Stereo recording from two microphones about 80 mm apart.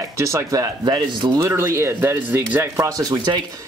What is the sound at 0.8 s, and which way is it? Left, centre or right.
Speech, right.